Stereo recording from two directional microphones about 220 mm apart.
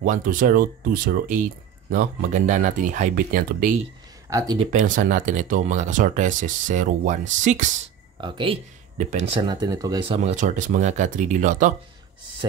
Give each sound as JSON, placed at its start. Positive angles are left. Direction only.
{"t": 0.0, "sound": "speech", "side_deg": -35}
{"t": 4.3, "sound": "speech", "side_deg": -15}
{"t": 4.9, "sound": "speech", "side_deg": -35}
{"t": 8.2, "sound": "speech", "side_deg": -25}